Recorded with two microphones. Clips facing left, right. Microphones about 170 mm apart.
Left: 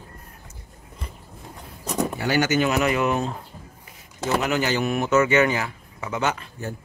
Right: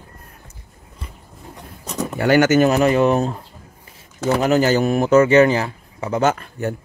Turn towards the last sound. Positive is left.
turn(degrees=-45)  # may be behind; listen again after turning